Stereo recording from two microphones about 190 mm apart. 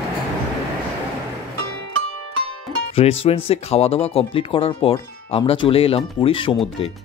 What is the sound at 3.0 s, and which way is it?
Speech, 30° left (ahead or behind).